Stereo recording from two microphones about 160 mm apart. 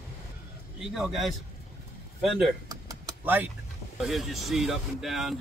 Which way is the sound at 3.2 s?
10° right (ahead or behind).